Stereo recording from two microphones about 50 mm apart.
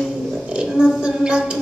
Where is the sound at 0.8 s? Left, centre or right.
Centre.